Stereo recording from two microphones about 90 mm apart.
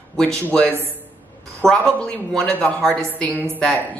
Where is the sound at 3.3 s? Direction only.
25° right (ahead or behind).